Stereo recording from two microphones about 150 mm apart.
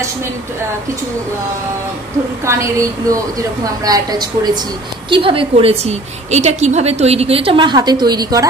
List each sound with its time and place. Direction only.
2.4 s a woman's voice: 20° right (ahead or behind)
5.1 s a woman's voice: 35° right (ahead or behind)